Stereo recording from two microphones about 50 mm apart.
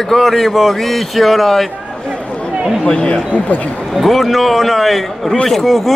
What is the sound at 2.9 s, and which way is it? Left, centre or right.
Speech, left.